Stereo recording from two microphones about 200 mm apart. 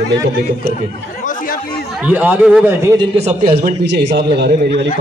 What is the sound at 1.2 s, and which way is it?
Chatter, 40° left (ahead or behind).